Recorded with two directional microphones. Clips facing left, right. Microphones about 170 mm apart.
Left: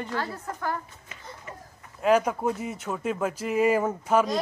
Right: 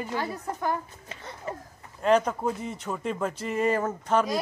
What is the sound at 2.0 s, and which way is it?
Speech, 5° left (ahead or behind).